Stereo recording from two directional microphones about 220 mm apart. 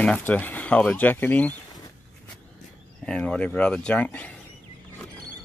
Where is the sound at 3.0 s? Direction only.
5° left (ahead or behind).